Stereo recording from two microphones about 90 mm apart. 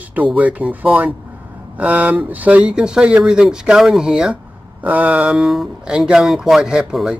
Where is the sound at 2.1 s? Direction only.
20° right (ahead or behind).